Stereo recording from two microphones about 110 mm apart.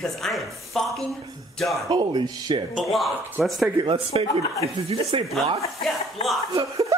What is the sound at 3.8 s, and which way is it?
Speech, 60° right (ahead or behind).